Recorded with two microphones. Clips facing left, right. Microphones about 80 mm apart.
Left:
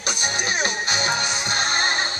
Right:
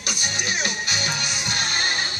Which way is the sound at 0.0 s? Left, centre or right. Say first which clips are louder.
Left 3 dB; left.